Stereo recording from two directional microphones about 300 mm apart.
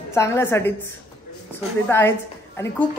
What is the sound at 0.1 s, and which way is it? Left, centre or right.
Speech, centre.